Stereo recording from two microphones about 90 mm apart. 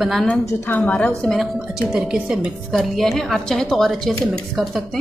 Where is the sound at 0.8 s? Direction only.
15° left (ahead or behind).